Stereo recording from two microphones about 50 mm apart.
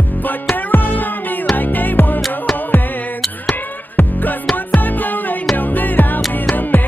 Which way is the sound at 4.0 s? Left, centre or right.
Left.